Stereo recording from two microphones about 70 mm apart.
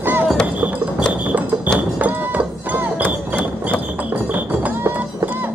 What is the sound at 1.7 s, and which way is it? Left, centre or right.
Mechanisms, right.